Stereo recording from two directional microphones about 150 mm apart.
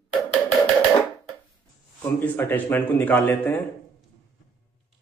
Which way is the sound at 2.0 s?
15° left (ahead or behind).